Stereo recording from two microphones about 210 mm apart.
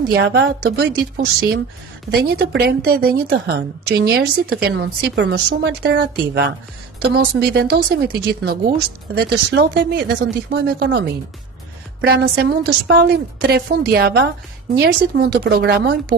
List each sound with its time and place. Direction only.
0.1 s speech: 50° right (ahead or behind)
12.4 s speech: 50° right (ahead or behind)